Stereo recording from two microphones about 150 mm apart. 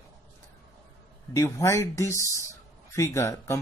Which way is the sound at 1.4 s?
20° left (ahead or behind).